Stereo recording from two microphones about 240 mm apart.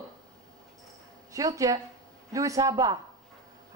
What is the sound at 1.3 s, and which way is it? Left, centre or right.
A man's voice, centre.